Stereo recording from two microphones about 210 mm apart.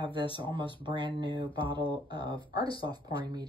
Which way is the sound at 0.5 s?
20° right (ahead or behind).